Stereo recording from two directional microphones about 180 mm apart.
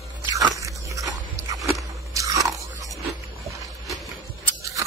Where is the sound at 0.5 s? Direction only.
20° right (ahead or behind).